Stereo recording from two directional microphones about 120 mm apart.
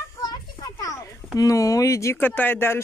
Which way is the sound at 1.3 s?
30° left (ahead or behind).